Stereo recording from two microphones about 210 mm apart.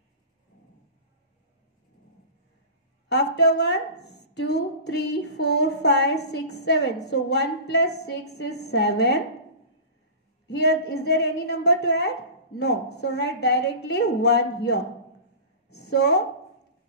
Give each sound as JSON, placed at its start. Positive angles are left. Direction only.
{"t": 3.1, "sound": "a woman's voice", "side_deg": 50}
{"t": 10.4, "sound": "a woman's voice", "side_deg": 50}